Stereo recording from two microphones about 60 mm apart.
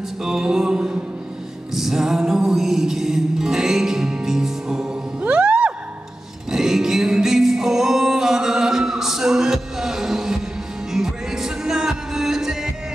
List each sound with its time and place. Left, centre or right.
0.2 s music: centre
5.2 s music: right
6.5 s music: centre